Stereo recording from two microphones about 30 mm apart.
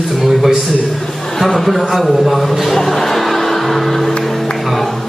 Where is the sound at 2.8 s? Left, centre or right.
Centre.